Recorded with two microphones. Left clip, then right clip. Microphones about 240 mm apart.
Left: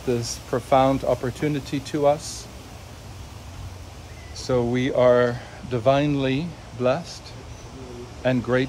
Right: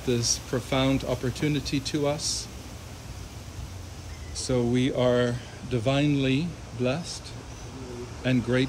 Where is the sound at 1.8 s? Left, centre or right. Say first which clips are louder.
Left 9 dB; centre.